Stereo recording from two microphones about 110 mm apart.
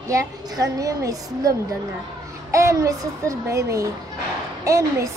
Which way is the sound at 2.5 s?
30° right (ahead or behind).